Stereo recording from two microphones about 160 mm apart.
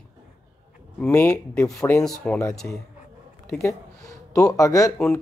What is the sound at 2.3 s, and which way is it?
Speech, 5° left (ahead or behind).